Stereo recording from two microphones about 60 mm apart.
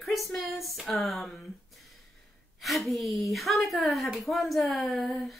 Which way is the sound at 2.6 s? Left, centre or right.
Centre.